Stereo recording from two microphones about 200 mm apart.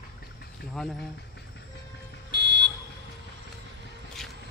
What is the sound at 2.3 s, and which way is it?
Car alarm, 60° right (ahead or behind).